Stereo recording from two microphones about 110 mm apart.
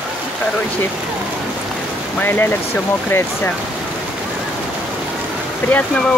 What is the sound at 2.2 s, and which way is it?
Speech, 20° left (ahead or behind).